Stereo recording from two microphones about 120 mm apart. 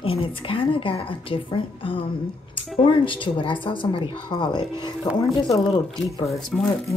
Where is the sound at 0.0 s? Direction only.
50° left (ahead or behind).